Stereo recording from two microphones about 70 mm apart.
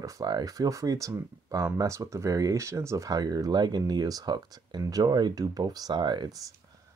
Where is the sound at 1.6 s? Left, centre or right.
Right.